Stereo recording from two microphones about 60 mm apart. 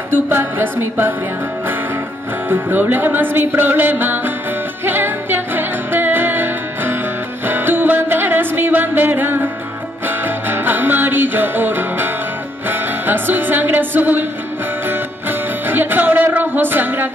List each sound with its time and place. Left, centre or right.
0.3 s music: right
2.5 s music: right
16.3 s a sound: right